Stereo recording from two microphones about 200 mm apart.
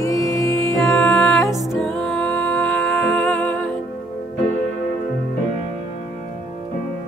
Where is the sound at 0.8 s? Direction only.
Centre (ahead or behind).